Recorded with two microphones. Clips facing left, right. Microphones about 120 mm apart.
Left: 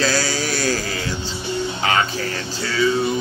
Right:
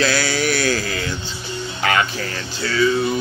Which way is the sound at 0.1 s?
35° left (ahead or behind).